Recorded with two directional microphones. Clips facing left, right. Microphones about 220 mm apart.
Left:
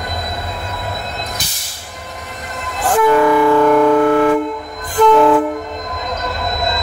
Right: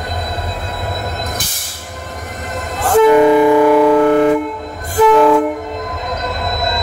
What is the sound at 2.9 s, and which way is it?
Train, 20° right (ahead or behind).